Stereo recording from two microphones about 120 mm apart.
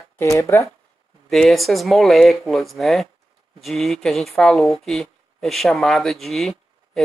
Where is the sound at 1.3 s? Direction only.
Centre (ahead or behind).